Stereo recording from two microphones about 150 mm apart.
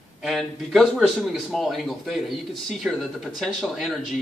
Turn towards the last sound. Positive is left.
turn(degrees=0)  # may be behind; listen again after turning